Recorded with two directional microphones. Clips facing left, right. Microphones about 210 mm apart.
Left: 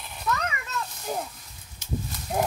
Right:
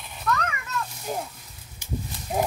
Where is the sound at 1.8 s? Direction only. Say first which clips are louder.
Left 1 dB; 5° right (ahead or behind).